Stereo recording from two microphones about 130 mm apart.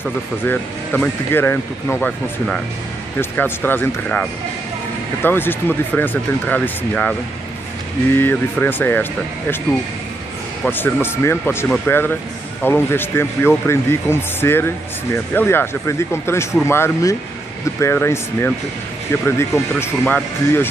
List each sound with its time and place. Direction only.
0.5 s speech: 10° left (ahead or behind)
10.6 s speech: 15° left (ahead or behind)